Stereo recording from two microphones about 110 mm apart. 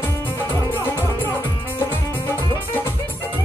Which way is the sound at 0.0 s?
20° left (ahead or behind).